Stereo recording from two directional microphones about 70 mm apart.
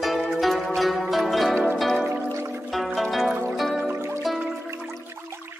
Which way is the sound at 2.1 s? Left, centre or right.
Right.